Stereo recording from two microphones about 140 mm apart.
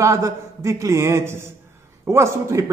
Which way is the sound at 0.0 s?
20° right (ahead or behind).